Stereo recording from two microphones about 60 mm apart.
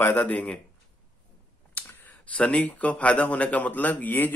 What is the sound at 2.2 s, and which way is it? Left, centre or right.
Speech, left.